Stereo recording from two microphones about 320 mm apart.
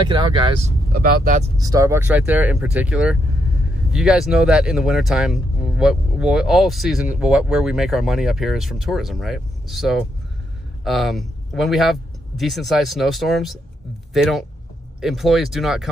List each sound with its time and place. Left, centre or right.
0.0 s speech: centre
0.9 s speech: right
1.6 s speech: centre